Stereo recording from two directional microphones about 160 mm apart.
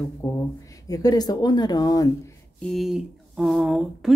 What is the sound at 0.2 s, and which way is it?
Speech, 20° left (ahead or behind).